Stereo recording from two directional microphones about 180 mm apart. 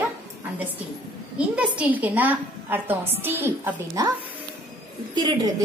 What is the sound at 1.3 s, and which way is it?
A woman's voice, 5° right (ahead or behind).